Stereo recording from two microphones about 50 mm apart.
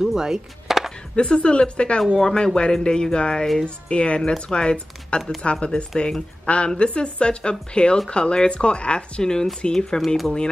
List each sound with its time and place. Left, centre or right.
0.0 s music: centre
1.1 s a woman's voice: centre